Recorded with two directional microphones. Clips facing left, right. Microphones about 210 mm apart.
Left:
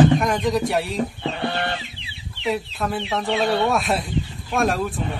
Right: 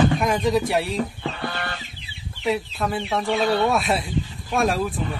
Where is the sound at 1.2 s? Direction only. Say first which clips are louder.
Left 4 dB; 25° left (ahead or behind).